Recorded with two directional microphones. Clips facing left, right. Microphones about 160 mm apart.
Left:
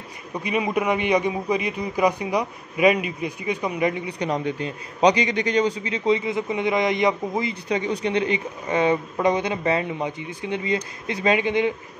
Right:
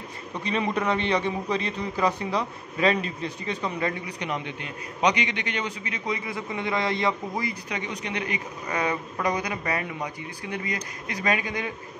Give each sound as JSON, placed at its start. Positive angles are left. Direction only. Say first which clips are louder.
{"t": 0.3, "sound": "a man's voice", "louder": "left 3 dB", "side_deg": 10}
{"t": 4.2, "sound": "a man's voice", "louder": "left 9 dB", "side_deg": 35}